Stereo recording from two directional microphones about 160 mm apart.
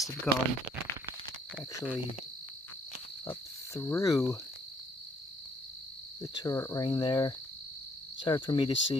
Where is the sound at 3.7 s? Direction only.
15° left (ahead or behind).